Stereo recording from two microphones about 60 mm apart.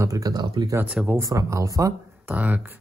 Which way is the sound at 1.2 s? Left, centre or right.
Right.